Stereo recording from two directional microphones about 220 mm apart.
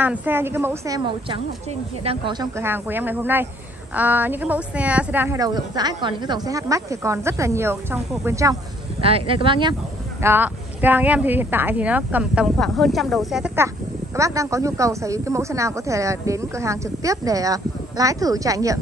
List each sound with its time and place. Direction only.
0.0 s speech: 10° right (ahead or behind)
9.0 s speech: 25° right (ahead or behind)
10.2 s speech: 10° right (ahead or behind)
14.1 s speech: 15° right (ahead or behind)